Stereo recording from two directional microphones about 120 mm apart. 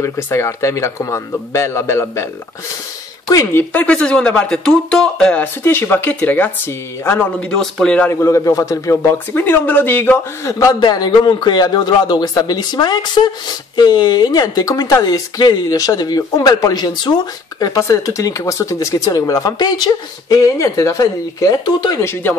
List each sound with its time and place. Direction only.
0.0 s speech: 25° left (ahead or behind)
3.3 s speech: 25° left (ahead or behind)
3.7 s speech: 10° left (ahead or behind)
7.5 s speech: 5° left (ahead or behind)
8.1 s speech: 25° left (ahead or behind)
22.0 s speech: 20° left (ahead or behind)